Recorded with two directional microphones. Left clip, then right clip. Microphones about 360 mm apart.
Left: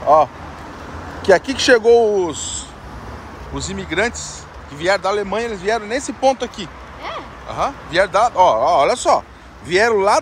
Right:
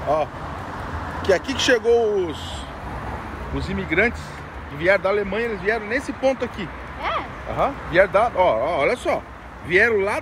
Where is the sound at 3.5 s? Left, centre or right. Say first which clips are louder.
Left 1 dB; centre.